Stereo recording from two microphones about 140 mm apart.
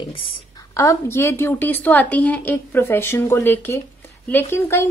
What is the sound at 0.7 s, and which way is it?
A woman's voice, 20° left (ahead or behind).